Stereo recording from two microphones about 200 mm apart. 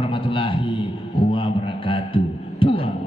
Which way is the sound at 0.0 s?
25° left (ahead or behind).